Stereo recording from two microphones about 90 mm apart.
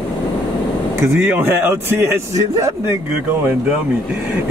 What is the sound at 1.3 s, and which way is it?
A man's voice, 25° right (ahead or behind).